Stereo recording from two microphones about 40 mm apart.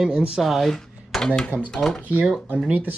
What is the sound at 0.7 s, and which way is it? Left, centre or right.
Dishes, centre.